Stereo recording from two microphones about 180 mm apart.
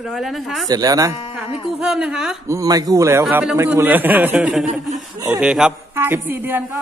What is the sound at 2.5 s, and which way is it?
A man's voice, 20° right (ahead or behind).